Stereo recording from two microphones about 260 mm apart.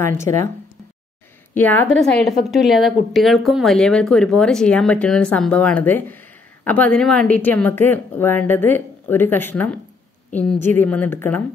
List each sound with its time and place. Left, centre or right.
0.0 s a woman's voice: centre
1.5 s a woman's voice: centre